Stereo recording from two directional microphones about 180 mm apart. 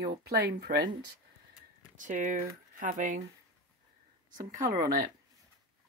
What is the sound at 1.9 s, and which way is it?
Speech, 45° right (ahead or behind).